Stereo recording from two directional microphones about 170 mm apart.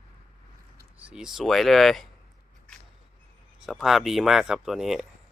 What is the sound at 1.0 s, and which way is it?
Speech, 5° right (ahead or behind).